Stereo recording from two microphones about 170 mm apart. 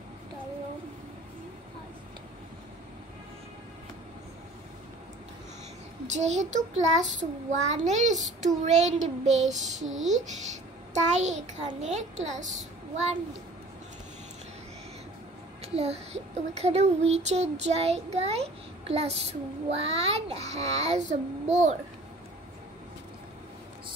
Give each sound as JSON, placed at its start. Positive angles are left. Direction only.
{"t": 6.0, "sound": "a child's voice", "side_deg": -45}
{"t": 15.6, "sound": "child singing", "side_deg": -40}